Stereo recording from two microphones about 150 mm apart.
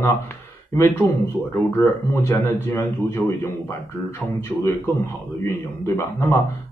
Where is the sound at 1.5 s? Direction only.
15° left (ahead or behind).